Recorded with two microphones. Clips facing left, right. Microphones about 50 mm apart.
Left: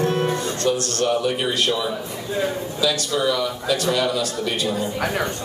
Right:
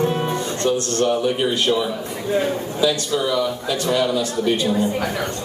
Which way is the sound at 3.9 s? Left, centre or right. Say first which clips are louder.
Right 4 dB; centre.